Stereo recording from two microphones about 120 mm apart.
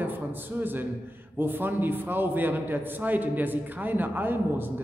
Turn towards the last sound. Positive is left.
turn(degrees=-15)  # may be behind; listen again after turning